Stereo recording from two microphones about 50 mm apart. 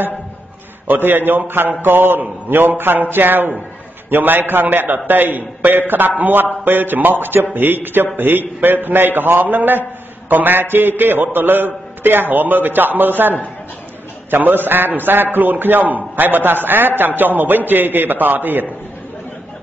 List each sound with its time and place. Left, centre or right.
0.8 s a man's voice: right